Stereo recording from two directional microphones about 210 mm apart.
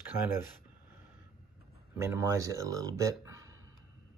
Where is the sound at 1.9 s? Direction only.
15° right (ahead or behind).